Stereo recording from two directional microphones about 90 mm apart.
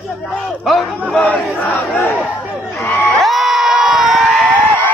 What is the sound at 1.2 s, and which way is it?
Battle cry, 15° left (ahead or behind).